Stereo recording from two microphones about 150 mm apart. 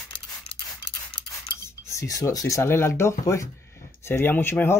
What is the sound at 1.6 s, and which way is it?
Speech, 20° left (ahead or behind).